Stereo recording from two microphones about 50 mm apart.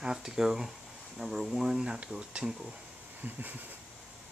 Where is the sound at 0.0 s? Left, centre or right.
Centre.